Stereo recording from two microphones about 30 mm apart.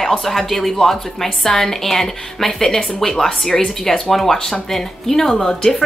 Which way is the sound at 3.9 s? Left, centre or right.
Centre.